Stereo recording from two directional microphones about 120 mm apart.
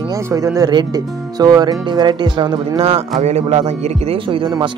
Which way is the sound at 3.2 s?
65° right (ahead or behind).